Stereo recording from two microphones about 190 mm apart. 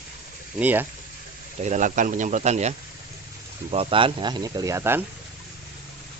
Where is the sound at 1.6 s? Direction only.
40° right (ahead or behind).